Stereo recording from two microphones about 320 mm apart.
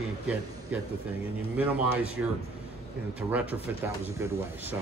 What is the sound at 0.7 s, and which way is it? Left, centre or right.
Speech, centre.